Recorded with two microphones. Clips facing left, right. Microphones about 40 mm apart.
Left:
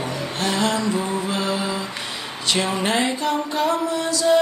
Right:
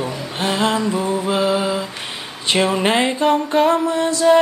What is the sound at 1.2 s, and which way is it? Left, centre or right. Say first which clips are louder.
Mantra: right 6 dB; centre.